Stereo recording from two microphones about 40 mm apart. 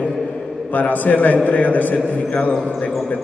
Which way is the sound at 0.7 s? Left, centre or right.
Left.